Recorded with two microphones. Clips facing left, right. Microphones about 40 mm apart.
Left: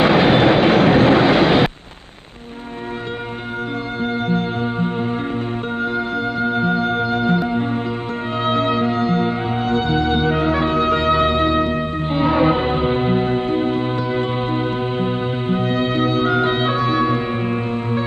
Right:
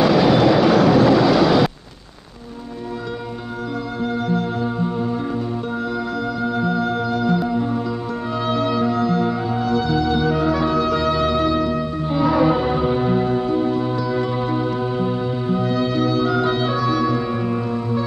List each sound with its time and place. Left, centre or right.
0.0 s train: left
5.8 s music: left